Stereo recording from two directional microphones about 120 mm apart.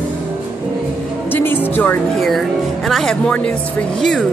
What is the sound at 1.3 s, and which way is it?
Speech, 15° left (ahead or behind).